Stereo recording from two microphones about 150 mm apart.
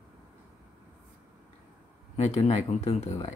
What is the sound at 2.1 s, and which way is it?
Speech, 45° left (ahead or behind).